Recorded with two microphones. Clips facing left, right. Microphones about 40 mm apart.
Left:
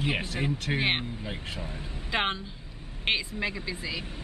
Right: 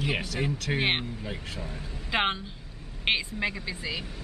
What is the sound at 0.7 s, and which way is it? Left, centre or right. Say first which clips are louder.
Speech: right 1 dB; centre.